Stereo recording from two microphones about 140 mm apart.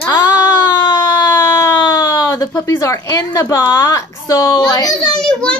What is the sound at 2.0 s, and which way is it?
A woman's voice, 20° left (ahead or behind).